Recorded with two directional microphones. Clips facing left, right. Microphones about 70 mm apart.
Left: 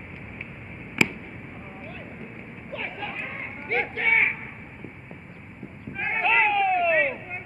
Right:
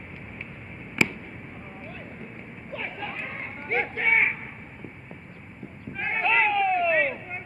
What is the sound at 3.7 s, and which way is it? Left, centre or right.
Speech, centre.